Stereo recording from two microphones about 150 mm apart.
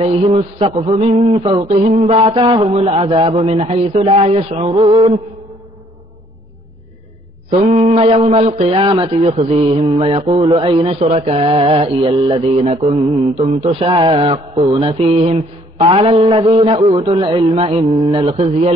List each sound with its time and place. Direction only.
0.0 s a man's voice: 45° right (ahead or behind)
1.6 s mantra: 45° right (ahead or behind)
2.5 s a man's voice: 40° right (ahead or behind)
7.6 s mantra: 55° right (ahead or behind)
10.5 s a man's voice: 35° right (ahead or behind)
15.0 s mantra: 45° right (ahead or behind)
15.8 s a man's voice: 40° right (ahead or behind)